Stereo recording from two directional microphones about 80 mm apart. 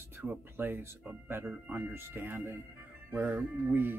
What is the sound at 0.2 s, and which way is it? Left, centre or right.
Speech, right.